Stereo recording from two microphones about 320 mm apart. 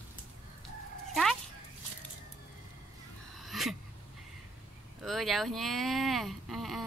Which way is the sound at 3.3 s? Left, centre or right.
Centre.